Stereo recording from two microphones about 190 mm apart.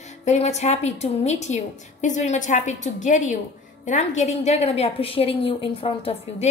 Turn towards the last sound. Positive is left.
turn(degrees=30)  # may be behind; listen again after turning